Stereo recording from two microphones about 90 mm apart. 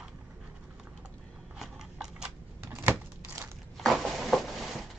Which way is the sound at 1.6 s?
5° right (ahead or behind).